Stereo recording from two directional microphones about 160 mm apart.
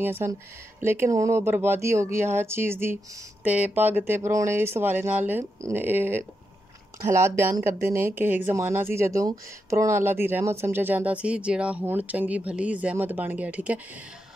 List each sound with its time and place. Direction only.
0.0 s speech: 15° right (ahead or behind)